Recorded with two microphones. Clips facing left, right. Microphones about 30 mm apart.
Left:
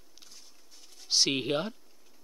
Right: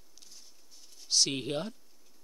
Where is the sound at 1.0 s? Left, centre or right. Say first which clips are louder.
Left 2 dB; centre.